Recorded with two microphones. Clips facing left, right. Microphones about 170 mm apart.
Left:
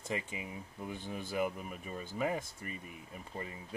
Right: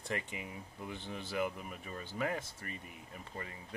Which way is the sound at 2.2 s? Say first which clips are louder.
Left 2 dB; 15° left (ahead or behind).